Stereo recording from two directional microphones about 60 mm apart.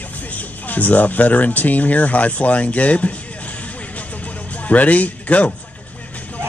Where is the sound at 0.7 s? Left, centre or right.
Left.